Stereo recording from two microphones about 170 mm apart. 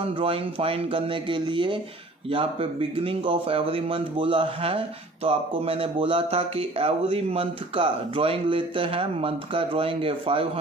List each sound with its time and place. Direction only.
0.0 s a man's voice: 35° right (ahead or behind)